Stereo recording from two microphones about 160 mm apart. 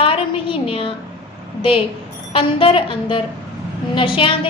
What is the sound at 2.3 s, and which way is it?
A woman's voice, 35° left (ahead or behind).